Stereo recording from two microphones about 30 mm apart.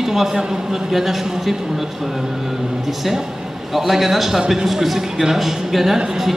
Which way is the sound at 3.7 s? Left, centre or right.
Centre.